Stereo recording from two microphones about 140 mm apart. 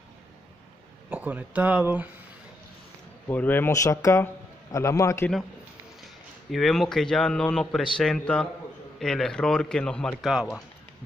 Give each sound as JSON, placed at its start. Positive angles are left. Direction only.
{"t": 1.1, "sound": "speech", "side_deg": -10}
{"t": 3.3, "sound": "a man's voice", "side_deg": 15}
{"t": 6.5, "sound": "a man's voice", "side_deg": 0}